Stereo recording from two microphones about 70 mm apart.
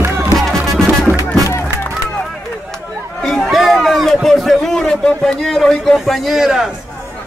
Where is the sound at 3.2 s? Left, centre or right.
Centre.